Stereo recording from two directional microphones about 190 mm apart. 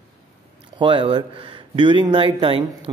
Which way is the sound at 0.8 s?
25° right (ahead or behind).